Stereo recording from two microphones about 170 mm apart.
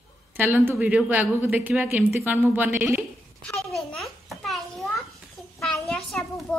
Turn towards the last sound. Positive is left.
turn(degrees=0)  # may be behind; listen again after turning